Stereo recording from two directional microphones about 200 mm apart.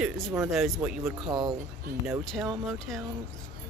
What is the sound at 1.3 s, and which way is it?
Speech, 20° right (ahead or behind).